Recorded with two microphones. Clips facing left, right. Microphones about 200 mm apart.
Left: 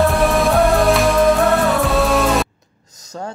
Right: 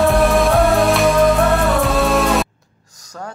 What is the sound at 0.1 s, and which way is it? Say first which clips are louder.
Music: right 1 dB; centre (ahead or behind).